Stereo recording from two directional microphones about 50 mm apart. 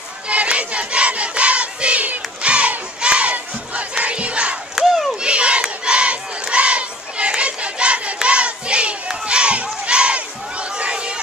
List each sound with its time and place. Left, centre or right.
0.3 s crowd: right
4.7 s crowd: centre
5.2 s crowd: right